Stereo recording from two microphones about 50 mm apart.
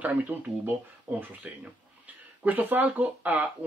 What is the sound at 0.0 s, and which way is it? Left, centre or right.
Speech, right.